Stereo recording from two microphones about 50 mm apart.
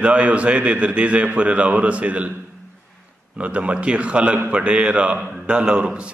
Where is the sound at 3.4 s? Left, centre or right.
Right.